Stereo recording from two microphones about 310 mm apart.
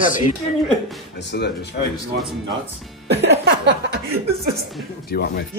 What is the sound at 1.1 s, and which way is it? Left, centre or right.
Speech, left.